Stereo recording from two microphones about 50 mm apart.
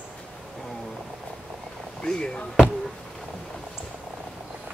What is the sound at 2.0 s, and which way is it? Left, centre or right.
Speech, centre.